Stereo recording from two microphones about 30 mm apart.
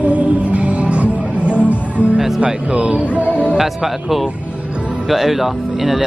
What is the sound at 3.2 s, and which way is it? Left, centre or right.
Music, left.